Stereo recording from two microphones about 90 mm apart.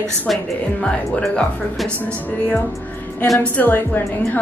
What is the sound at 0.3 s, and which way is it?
A woman's voice, 10° left (ahead or behind).